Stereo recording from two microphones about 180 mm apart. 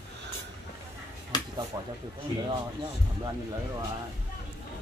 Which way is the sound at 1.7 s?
20° right (ahead or behind).